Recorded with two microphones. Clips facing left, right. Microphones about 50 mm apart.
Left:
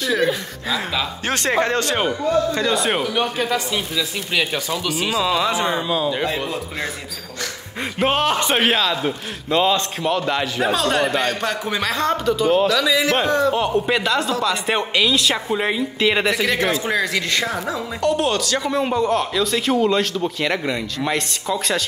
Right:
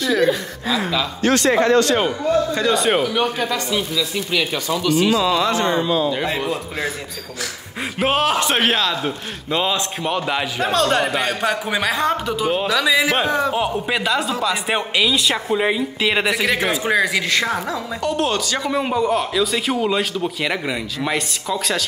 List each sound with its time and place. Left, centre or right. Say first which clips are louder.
1.3 s a man's voice: right 4 dB; left
2.5 s speech: right 2 dB; centre
3.3 s speech: even; centre
4.8 s speech: right 6 dB; centre
8.0 s speech: right 1 dB; centre
10.6 s a man's voice: right 2 dB; centre
17.3 s speech: right 2 dB; centre